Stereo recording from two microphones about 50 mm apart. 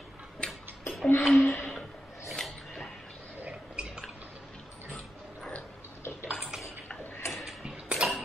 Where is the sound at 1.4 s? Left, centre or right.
Left.